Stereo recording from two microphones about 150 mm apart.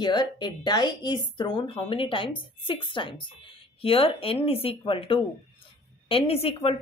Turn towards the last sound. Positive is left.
turn(degrees=40)  # may be behind; listen again after turning